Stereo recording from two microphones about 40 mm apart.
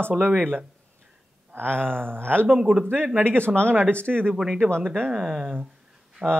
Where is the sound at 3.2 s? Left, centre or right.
Right.